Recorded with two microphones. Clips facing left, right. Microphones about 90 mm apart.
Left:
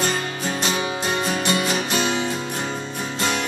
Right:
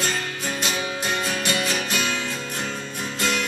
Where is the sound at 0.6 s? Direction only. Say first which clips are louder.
Left 3 dB; 30° left (ahead or behind).